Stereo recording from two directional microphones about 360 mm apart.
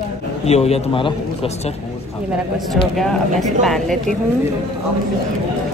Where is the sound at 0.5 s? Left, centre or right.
Centre.